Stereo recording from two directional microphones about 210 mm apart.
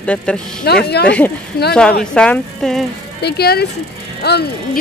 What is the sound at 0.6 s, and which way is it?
Speech, 50° left (ahead or behind).